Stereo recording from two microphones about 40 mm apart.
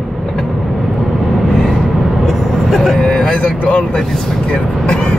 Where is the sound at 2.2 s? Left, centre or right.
Centre.